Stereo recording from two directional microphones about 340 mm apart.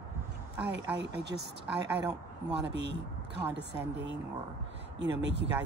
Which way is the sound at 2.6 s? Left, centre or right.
Right.